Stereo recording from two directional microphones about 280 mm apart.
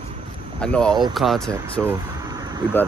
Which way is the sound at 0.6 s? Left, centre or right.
Centre.